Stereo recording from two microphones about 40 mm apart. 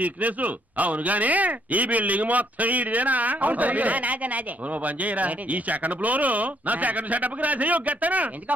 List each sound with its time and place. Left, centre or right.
0.0 s speech: right